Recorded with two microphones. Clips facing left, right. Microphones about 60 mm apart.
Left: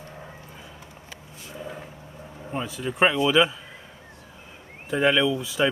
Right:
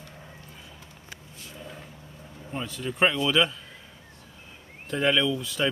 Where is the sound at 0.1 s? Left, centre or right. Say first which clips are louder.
Left 5 dB; left.